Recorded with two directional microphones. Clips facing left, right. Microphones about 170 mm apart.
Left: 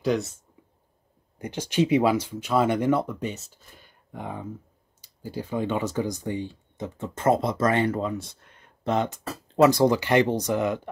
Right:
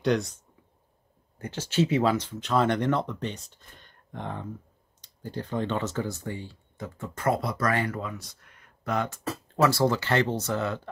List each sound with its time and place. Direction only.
0.0 s speech: centre (ahead or behind)
1.4 s speech: 15° left (ahead or behind)